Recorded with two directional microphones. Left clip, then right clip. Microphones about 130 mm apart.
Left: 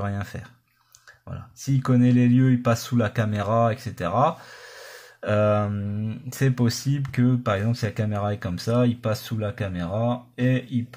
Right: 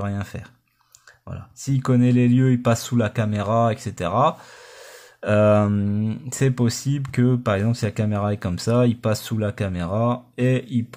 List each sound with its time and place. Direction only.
0.0 s speech: 25° right (ahead or behind); by 6.5 s 40° right (ahead or behind)
6.5 s speech: 25° right (ahead or behind); by 10.8 s 65° right (ahead or behind)